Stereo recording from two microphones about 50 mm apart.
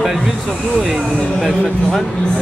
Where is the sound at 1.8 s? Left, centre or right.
Centre.